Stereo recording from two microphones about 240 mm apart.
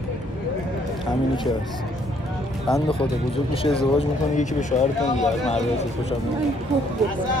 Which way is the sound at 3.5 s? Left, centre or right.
Left.